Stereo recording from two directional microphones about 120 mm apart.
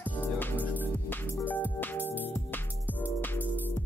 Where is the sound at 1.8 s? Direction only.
15° left (ahead or behind).